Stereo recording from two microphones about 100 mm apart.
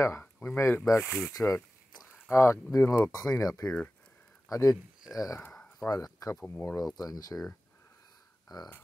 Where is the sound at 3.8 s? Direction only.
15° left (ahead or behind).